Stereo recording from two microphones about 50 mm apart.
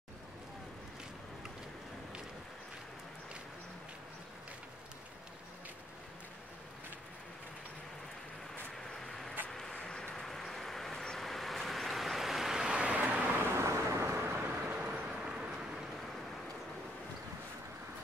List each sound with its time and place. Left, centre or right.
8.7 s vehicle: centre
9.5 s a sound: centre
10.1 s vehicle: centre
13.6 s vehicle: right
14.1 s vehicle: right
14.4 s vehicle: right
14.8 s vehicle: right